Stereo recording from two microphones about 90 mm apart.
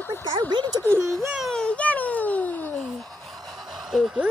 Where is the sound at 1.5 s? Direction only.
10° left (ahead or behind).